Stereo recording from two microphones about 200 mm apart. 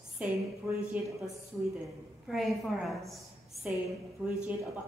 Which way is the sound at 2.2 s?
Centre (ahead or behind).